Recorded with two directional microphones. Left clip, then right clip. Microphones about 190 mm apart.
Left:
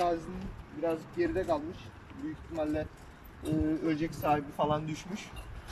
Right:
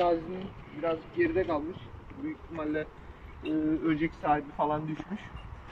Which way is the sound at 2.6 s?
15° left (ahead or behind).